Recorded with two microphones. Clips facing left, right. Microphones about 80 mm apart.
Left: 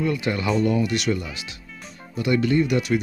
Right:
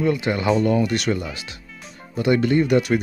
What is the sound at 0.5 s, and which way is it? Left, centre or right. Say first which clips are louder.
Speech: right 3 dB; right.